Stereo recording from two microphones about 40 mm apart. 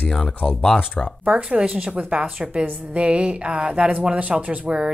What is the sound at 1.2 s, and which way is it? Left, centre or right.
Speech, right.